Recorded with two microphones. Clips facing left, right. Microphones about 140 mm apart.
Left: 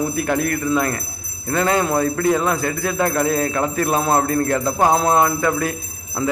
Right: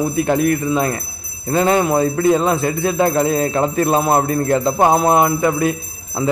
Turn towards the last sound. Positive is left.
turn(degrees=-20)  # may be behind; listen again after turning